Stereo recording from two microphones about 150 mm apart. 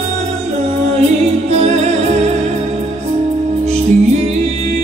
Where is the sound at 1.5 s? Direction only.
45° right (ahead or behind).